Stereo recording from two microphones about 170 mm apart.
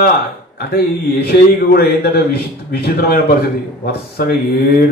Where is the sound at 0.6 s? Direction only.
65° left (ahead or behind).